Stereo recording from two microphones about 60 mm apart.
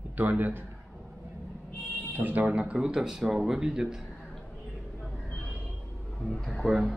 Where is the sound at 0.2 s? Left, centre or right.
Right.